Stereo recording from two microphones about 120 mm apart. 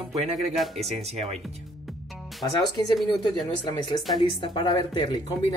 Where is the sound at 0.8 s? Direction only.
60° right (ahead or behind).